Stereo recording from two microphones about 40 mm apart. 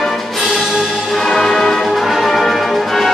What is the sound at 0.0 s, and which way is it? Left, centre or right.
Music, centre.